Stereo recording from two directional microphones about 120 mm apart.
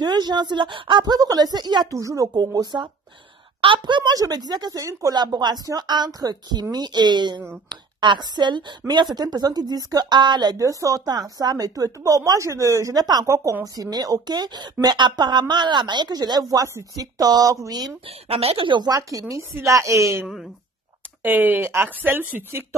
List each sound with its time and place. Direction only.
0.0 s a woman's voice: 35° right (ahead or behind)
18.0 s a woman's voice: 55° right (ahead or behind); by 22.8 s 20° right (ahead or behind)